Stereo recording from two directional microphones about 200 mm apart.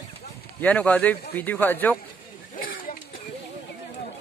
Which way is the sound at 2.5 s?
45° left (ahead or behind).